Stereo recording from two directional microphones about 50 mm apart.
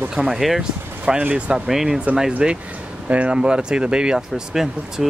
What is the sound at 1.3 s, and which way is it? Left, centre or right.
Speech, right.